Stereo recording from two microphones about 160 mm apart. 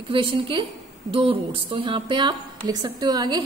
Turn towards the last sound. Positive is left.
turn(degrees=-25)  # may be behind; listen again after turning